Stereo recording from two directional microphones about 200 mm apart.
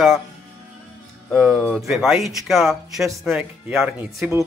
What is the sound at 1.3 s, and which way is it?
Speech, centre (ahead or behind).